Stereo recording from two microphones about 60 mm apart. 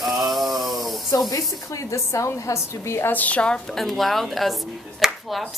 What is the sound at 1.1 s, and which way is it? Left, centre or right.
A woman's voice, left.